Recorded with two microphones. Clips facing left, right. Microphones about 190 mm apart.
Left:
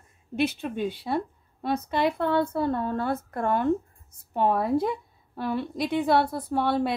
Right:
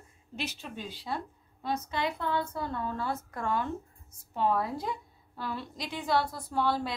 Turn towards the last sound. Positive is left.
turn(degrees=60)  # may be behind; listen again after turning